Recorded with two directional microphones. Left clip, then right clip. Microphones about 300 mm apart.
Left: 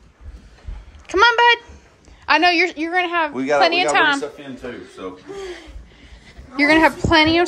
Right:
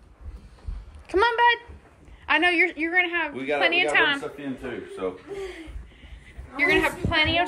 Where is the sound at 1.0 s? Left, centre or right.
Centre.